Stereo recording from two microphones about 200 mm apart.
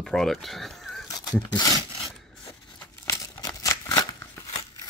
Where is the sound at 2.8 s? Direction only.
15° left (ahead or behind).